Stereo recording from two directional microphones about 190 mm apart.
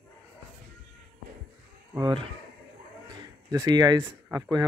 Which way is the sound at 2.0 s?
20° right (ahead or behind).